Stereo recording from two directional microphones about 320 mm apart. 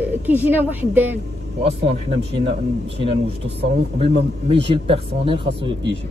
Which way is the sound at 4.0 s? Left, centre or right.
Centre.